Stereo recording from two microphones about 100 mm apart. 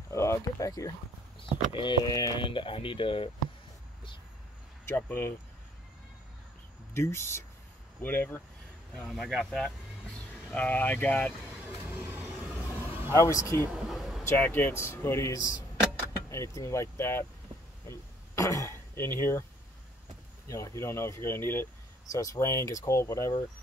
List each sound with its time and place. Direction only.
0.1 s speech: 30° left (ahead or behind)
1.7 s speech: 55° left (ahead or behind)
2.0 s speech: 40° left (ahead or behind)
2.4 s speech: 60° left (ahead or behind)
4.8 s speech: 20° left (ahead or behind)
6.9 s speech: 25° left (ahead or behind)
8.9 s speech: 5° left (ahead or behind)
11.6 s vehicle: 20° right (ahead or behind)
13.1 s speech: 30° left (ahead or behind)
13.7 s a sound: centre (ahead or behind)
14.2 s speech: 20° left (ahead or behind)
17.8 s throat clearing: 30° left (ahead or behind)
20.4 s speech: 30° left (ahead or behind)
22.1 s speech: 35° left (ahead or behind)